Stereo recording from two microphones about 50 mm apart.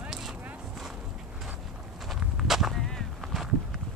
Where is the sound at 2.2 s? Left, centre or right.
Centre.